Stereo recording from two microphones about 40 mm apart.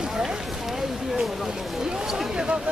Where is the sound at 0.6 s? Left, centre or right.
Centre.